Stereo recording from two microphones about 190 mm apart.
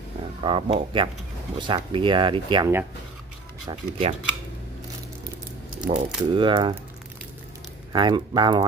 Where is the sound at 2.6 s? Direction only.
15° right (ahead or behind).